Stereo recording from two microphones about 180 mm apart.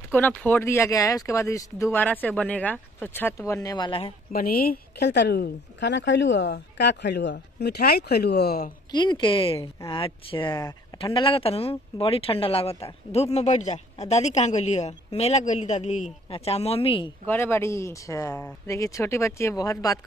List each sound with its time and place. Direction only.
0.3 s speech: 10° left (ahead or behind); by 4.1 s 25° left (ahead or behind)
4.3 s a woman's voice: 55° left (ahead or behind)
8.9 s speech: 25° left (ahead or behind)
17.3 s speech: 10° left (ahead or behind)